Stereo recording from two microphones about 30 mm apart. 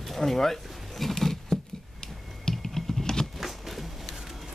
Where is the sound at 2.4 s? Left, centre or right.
Centre.